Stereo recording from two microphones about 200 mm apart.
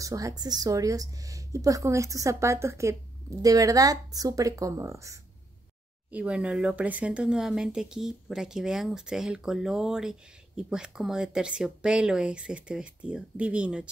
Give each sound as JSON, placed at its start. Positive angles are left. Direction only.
{"t": 0.0, "sound": "a woman's voice", "side_deg": -15}